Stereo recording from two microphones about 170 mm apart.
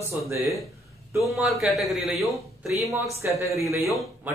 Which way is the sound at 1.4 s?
Centre (ahead or behind).